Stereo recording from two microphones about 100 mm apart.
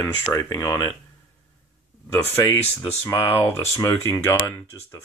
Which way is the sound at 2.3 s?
25° left (ahead or behind).